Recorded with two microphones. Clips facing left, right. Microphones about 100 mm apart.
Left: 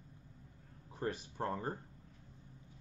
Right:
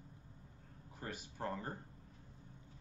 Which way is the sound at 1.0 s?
40° left (ahead or behind).